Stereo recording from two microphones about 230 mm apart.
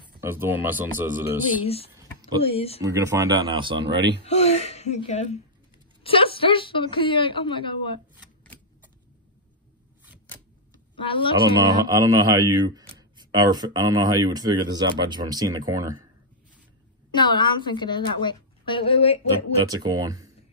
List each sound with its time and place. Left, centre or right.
0.2 s speech: centre
1.6 s a woman's voice: left
2.8 s speech: centre
3.9 s speech: right
4.3 s a woman's voice: left
11.0 s a woman's voice: left
11.4 s speech: centre
17.1 s a woman's voice: centre
19.6 s speech: centre